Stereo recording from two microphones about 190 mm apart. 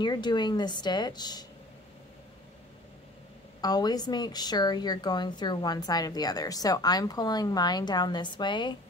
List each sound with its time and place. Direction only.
0.0 s a woman's voice: 25° left (ahead or behind)
3.6 s a woman's voice: 20° left (ahead or behind)